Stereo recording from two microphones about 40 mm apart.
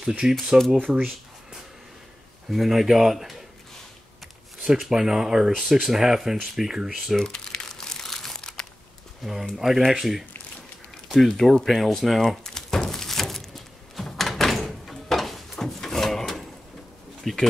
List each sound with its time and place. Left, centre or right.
0.2 s speech: centre
2.5 s speech: centre
4.7 s speech: centre
7.3 s crumpling: centre
9.2 s speech: centre
11.1 s speech: centre
12.4 s a sound: centre
13.9 s door: centre
15.6 s drawer open or close: centre
17.2 s pigeon: centre